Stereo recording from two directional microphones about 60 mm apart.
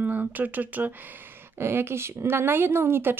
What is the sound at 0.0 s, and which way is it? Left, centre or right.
Speech, right.